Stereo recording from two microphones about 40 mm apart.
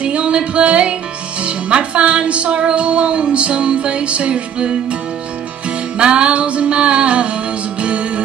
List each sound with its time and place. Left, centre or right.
0.0 s music: right
1.4 s speech: right
5.9 s speech: right